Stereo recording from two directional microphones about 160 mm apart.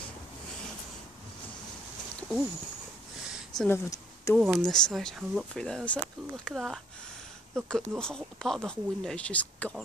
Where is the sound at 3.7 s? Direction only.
20° left (ahead or behind).